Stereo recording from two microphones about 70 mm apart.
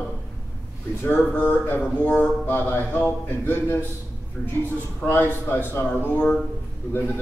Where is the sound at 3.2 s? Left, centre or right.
Left.